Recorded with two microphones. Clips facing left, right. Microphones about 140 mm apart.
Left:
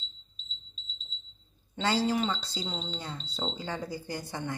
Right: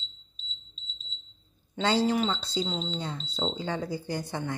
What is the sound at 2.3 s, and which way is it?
A woman's voice, 10° left (ahead or behind).